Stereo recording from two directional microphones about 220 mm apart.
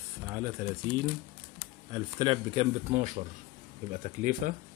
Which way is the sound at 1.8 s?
20° right (ahead or behind).